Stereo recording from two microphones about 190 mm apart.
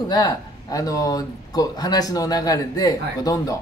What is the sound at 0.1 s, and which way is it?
Speech, 20° left (ahead or behind).